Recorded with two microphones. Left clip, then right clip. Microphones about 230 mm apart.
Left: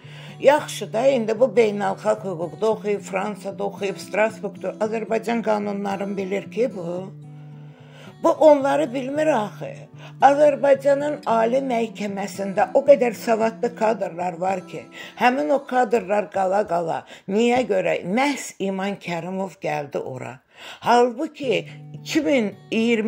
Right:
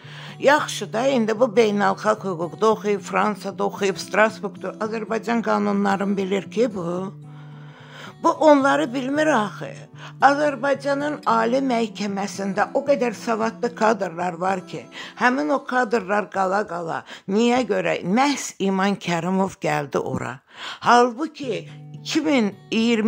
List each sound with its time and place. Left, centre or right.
0.4 s speech: centre
8.2 s speech: centre
16.6 s speech: centre